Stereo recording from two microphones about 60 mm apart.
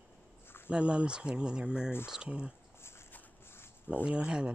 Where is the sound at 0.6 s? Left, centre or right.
Centre.